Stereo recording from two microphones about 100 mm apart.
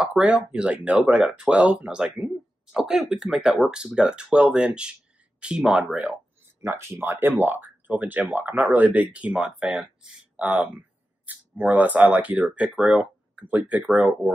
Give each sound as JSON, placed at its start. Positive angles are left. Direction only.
{"t": 0.0, "sound": "speech", "side_deg": -10}
{"t": 6.6, "sound": "speech", "side_deg": -25}